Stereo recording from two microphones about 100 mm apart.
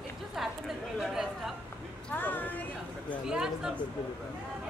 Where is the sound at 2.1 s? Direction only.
20° left (ahead or behind).